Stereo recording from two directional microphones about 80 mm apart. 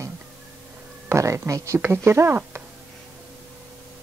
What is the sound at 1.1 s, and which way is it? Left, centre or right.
Speech, right.